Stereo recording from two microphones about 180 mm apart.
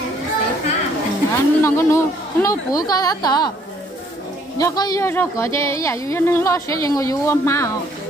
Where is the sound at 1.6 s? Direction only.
15° left (ahead or behind).